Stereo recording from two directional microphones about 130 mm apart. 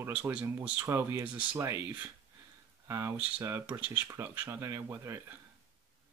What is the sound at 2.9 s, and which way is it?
Speech, 20° right (ahead or behind).